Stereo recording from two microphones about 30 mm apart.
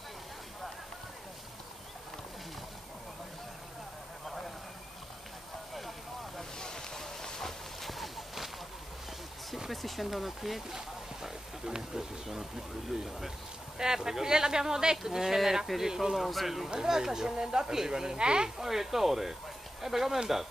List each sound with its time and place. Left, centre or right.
5.8 s vehicle: centre
6.6 s run: centre
7.8 s a sound: centre
9.7 s a sound: centre
10.0 s speech: centre
10.7 s a sound: centre
12.3 s speech: centre
13.7 s speech: centre
16.2 s speech: centre
16.7 s speech: centre
18.6 s speech: centre